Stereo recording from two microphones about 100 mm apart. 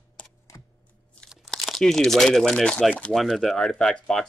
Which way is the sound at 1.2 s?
Centre (ahead or behind).